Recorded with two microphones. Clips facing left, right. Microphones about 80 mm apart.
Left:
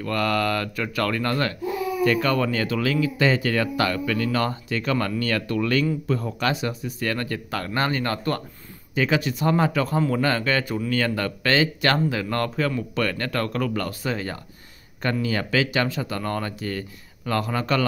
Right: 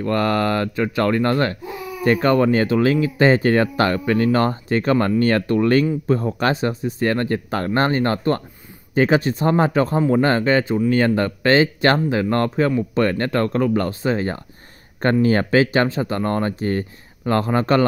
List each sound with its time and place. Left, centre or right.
0.0 s speech: right